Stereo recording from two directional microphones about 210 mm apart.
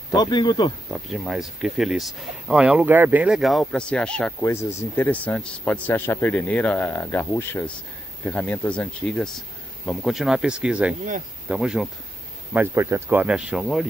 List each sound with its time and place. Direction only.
0.1 s speech: 20° left (ahead or behind)
0.9 s speech: centre (ahead or behind)